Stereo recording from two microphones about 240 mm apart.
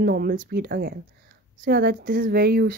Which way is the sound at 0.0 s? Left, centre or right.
Right.